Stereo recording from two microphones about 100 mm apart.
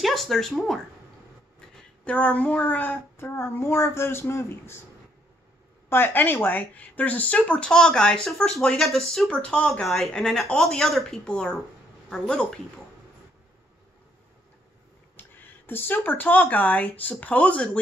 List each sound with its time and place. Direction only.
0.0 s speech: centre (ahead or behind)
2.0 s speech: 15° left (ahead or behind)
5.9 s speech: 20° left (ahead or behind)
15.1 s speech: 20° left (ahead or behind)